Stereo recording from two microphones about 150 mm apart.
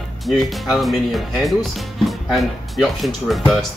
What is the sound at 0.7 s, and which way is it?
Speech, centre (ahead or behind).